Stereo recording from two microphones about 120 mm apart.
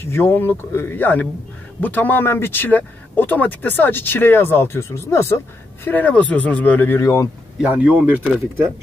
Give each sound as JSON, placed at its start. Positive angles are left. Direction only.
{"t": 0.0, "sound": "a man's voice", "side_deg": 20}
{"t": 7.6, "sound": "speech", "side_deg": -10}